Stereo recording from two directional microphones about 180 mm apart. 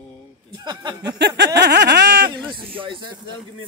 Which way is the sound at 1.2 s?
70° right (ahead or behind).